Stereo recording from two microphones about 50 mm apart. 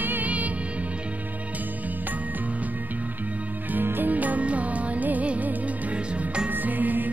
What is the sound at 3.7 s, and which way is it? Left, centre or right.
Music, right.